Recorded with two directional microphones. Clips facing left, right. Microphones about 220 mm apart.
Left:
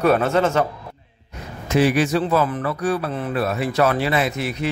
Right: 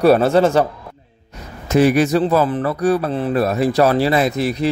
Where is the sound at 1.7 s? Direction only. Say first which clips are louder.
Right 4 dB; 45° right (ahead or behind).